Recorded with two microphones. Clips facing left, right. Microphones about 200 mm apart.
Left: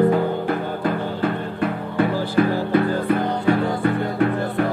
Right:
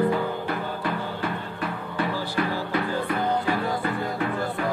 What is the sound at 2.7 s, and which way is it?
Music, 55° left (ahead or behind).